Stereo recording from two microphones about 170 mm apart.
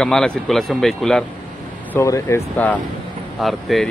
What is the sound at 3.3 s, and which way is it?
Speech, centre (ahead or behind).